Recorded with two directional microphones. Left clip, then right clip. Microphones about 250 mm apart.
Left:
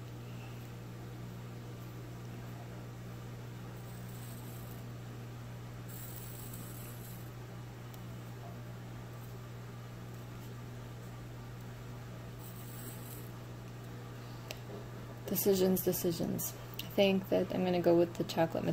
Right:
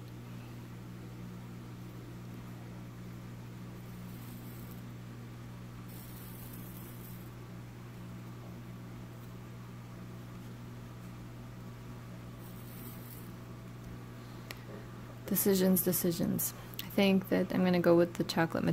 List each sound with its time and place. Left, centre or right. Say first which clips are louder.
15.2 s speech: even; right